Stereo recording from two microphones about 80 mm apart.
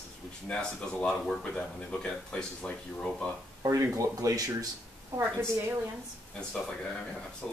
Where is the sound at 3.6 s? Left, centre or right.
Right.